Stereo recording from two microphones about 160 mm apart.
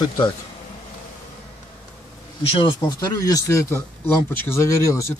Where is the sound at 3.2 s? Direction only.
20° left (ahead or behind).